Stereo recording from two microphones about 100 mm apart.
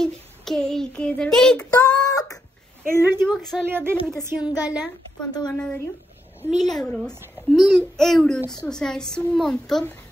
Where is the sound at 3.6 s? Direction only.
20° right (ahead or behind).